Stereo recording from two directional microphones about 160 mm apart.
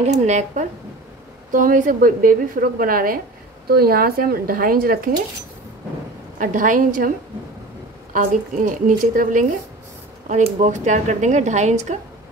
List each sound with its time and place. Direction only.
0.3 s speech: 45° right (ahead or behind)
1.5 s a woman's voice: 55° right (ahead or behind)
3.6 s speech: 75° right (ahead or behind)
6.3 s a woman's voice: 55° right (ahead or behind)
8.1 s a woman's voice: 55° right (ahead or behind)